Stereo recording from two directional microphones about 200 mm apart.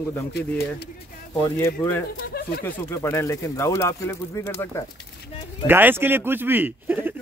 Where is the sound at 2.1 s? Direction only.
50° left (ahead or behind).